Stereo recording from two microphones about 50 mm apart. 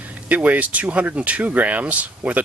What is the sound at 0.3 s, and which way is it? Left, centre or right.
Speech, right.